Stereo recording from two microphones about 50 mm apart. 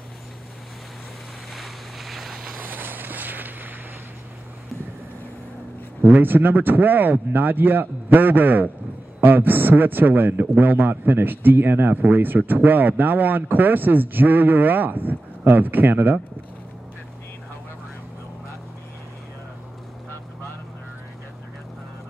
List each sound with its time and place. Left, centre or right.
1.5 s boat: centre
2.6 s a sound: right
6.0 s a man's voice: right